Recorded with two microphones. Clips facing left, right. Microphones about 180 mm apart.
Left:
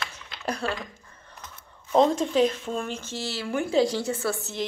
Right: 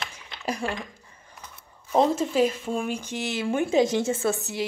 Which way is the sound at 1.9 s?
5° right (ahead or behind).